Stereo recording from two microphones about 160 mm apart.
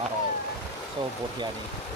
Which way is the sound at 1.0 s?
30° right (ahead or behind).